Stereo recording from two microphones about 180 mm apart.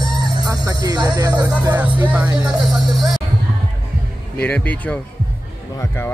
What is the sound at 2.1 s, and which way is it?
Music, 5° right (ahead or behind).